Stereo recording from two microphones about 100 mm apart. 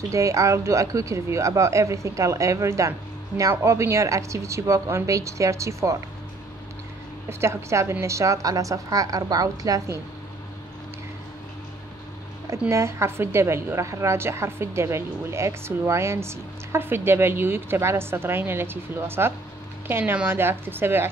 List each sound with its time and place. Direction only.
0.1 s speech: 30° right (ahead or behind)
7.2 s speech: 25° right (ahead or behind)
12.4 s a woman's voice: 30° right (ahead or behind)